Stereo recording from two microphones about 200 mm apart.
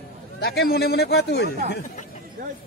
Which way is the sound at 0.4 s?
50° left (ahead or behind).